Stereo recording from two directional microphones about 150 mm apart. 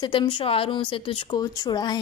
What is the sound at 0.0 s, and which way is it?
A woman's voice, 30° left (ahead or behind).